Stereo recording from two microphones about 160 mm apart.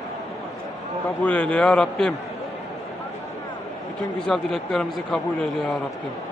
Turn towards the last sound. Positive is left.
turn(degrees=5)  # may be behind; listen again after turning